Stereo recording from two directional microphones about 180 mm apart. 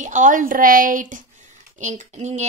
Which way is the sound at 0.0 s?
45° right (ahead or behind).